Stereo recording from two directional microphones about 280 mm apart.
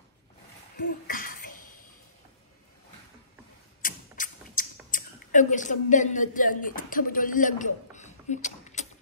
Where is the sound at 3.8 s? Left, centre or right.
Left.